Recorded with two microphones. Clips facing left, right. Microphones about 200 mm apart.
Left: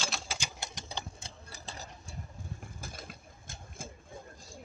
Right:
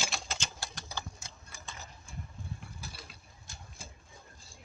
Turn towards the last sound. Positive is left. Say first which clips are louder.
# left 6 dB
turn(degrees=50)  # may be behind; listen again after turning